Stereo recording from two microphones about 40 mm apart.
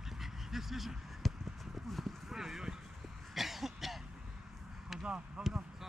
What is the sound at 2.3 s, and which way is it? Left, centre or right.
Clip-clop, centre.